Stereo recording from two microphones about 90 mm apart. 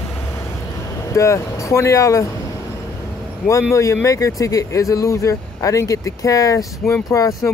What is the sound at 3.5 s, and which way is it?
Speech, 35° left (ahead or behind).